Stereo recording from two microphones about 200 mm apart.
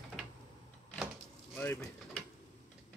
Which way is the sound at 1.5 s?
10° left (ahead or behind).